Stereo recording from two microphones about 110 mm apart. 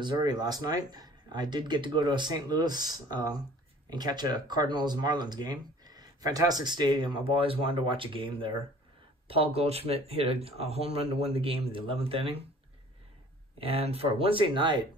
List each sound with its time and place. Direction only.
0.0 s speech: 40° right (ahead or behind)
9.3 s speech: 65° right (ahead or behind)
13.6 s speech: 60° right (ahead or behind); by 14.9 s 45° right (ahead or behind)